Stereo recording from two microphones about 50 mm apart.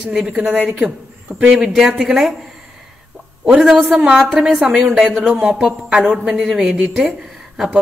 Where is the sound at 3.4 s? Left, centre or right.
Centre.